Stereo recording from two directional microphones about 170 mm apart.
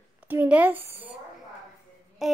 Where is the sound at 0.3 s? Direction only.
10° right (ahead or behind).